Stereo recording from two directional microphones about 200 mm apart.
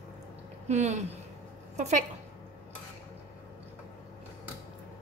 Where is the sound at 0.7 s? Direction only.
35° right (ahead or behind).